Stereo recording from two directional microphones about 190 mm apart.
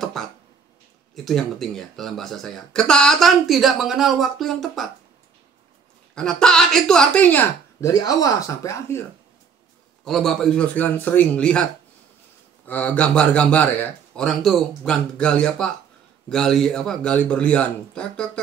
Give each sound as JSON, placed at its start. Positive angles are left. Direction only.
{"t": 0.2, "sound": "a sound", "side_deg": 0}
{"t": 1.1, "sound": "speech", "side_deg": 0}
{"t": 6.1, "sound": "speech", "side_deg": 5}
{"t": 10.0, "sound": "speech", "side_deg": 0}
{"t": 12.6, "sound": "speech", "side_deg": 10}